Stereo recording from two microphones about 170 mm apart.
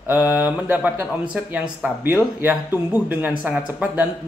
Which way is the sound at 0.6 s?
10° right (ahead or behind).